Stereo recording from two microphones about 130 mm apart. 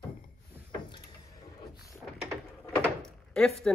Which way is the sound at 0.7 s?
40° left (ahead or behind).